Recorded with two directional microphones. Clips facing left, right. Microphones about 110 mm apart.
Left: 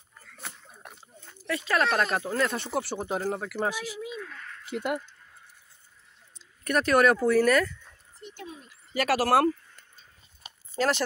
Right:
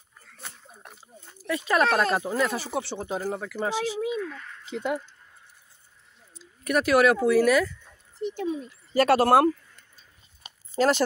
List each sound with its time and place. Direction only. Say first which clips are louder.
0.4 s a sound: left 1 dB; 5° left (ahead or behind)
1.0 s a sound: right 2 dB; 15° right (ahead or behind)
2.0 s speech: right 2 dB; 10° right (ahead or behind); by 3.7 s 10° left (ahead or behind)
3.7 s speech: right 8 dB; 90° right
4.1 s speech: right 8 dB; 5° right (ahead or behind)
4.6 s speech: right 1 dB; 10° left (ahead or behind)
6.3 s speech: right 2 dB; 5° right (ahead or behind)
8.9 s speech: right 4 dB; 30° right (ahead or behind)
10.8 s speech: right 4 dB; 15° right (ahead or behind)